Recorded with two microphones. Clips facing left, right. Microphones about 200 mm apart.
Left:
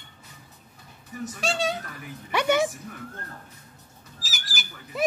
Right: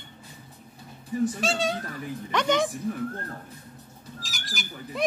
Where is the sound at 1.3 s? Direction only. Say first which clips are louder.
Right 1 dB; centre (ahead or behind).